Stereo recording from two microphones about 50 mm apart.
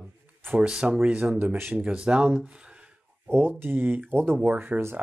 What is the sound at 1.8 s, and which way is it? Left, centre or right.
Speech, right.